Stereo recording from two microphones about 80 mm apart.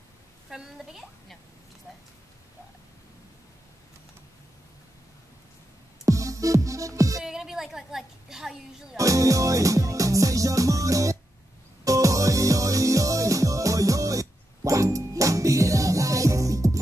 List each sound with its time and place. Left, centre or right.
0.5 s a woman's voice: centre
6.0 s music: right
7.2 s a sound: centre
8.9 s music: right